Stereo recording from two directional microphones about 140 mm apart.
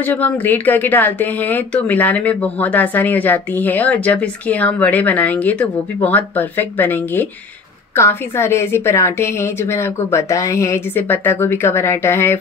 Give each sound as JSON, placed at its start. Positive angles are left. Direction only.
{"t": 0.0, "sound": "a woman's voice", "side_deg": 15}